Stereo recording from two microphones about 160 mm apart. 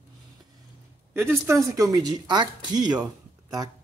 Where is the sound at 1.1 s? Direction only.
15° right (ahead or behind).